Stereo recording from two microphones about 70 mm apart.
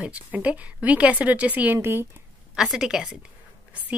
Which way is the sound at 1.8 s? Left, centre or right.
Right.